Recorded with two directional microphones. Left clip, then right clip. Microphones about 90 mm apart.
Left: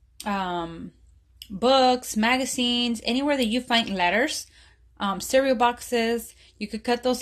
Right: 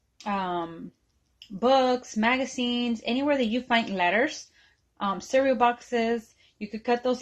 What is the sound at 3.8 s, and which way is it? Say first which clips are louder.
A woman's voice: left 1 dB; 30° left (ahead or behind).